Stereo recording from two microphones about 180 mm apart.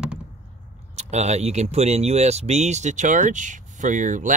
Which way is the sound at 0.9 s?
40° right (ahead or behind).